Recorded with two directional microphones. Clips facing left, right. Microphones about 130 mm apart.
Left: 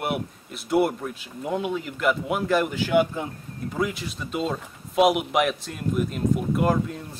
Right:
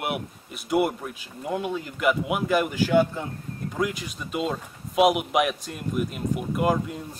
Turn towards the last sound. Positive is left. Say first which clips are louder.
# left 1 dB
turn(degrees=-5)  # may be behind; listen again after turning